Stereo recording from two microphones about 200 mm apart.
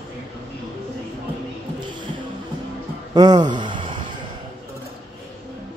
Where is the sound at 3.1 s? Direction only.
20° right (ahead or behind).